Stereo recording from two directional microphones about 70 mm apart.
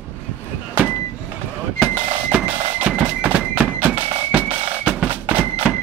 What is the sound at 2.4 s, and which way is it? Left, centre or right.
Music, centre.